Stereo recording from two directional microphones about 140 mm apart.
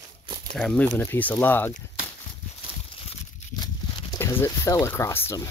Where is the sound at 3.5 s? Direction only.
30° left (ahead or behind).